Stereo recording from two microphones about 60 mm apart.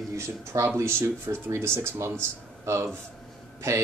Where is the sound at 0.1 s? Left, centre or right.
Right.